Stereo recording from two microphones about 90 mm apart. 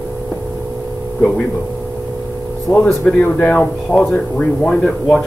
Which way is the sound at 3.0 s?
15° left (ahead or behind).